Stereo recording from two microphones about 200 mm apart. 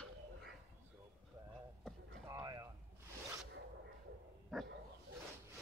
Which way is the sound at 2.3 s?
15° right (ahead or behind).